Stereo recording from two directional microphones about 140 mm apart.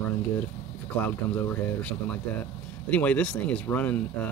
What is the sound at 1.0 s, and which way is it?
Speech, 10° left (ahead or behind).